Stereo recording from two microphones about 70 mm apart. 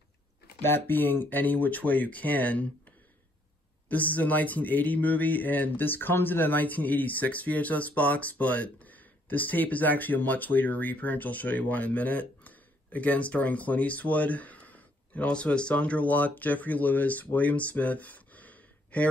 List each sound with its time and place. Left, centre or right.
0.6 s speech: left
3.9 s speech: left